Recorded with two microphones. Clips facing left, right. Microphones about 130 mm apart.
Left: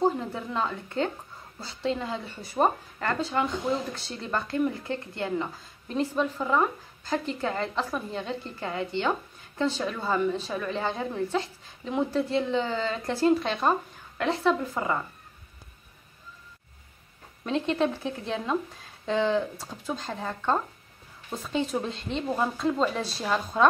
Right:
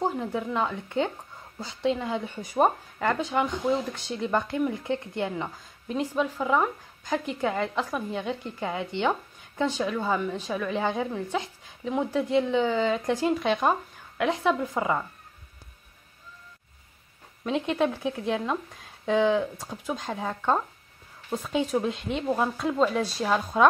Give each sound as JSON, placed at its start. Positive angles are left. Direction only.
{"t": 0.6, "sound": "a woman's voice", "side_deg": -15}
{"t": 17.5, "sound": "a woman's voice", "side_deg": -10}